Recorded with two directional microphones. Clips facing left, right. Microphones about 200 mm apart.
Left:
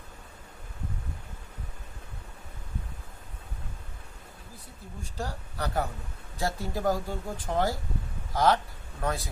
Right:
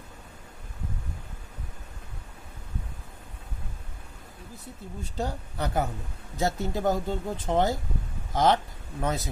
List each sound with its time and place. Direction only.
5.0 s speech: 20° right (ahead or behind)